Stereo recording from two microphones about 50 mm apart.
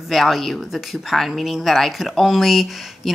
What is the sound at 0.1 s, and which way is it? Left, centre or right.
Speech, centre.